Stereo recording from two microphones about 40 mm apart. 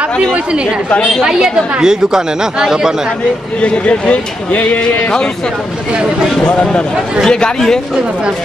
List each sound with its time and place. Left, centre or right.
1.4 s speech: centre
3.6 s a man's voice: left
6.4 s speech: left